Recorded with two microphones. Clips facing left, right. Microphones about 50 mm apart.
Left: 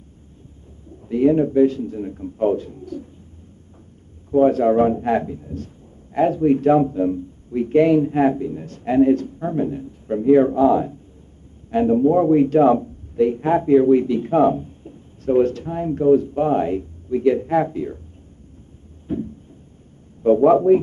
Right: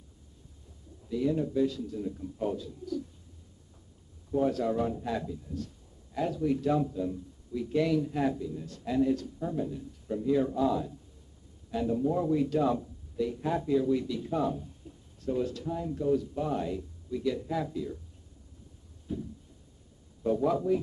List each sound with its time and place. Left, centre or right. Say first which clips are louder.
1.0 s a man's voice: left 13 dB; left
4.3 s a man's voice: left 13 dB; left
19.1 s a man's voice: left 11 dB; left